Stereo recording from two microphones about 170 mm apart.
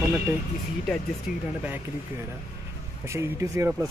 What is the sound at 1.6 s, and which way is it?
Speech, 10° right (ahead or behind).